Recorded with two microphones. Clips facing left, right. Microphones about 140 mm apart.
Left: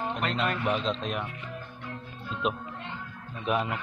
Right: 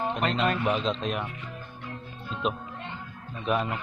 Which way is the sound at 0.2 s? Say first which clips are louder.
Right 3 dB; 25° right (ahead or behind).